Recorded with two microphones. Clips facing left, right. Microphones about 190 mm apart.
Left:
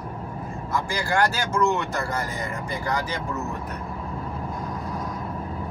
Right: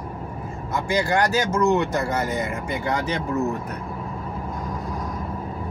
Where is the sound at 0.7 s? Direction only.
20° right (ahead or behind).